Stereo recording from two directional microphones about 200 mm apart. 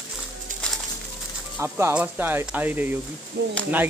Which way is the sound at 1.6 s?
10° right (ahead or behind).